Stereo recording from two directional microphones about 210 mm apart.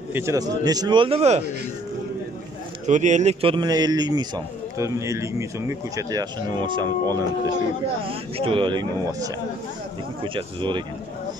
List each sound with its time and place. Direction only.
0.1 s speech: 15° right (ahead or behind); by 1.4 s 30° right (ahead or behind)
2.9 s speech: 35° right (ahead or behind)